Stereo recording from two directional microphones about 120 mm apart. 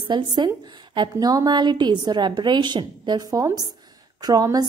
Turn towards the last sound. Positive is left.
turn(degrees=-35)  # may be behind; listen again after turning